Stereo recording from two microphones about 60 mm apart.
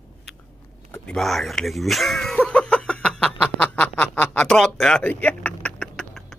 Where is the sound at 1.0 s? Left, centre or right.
Centre.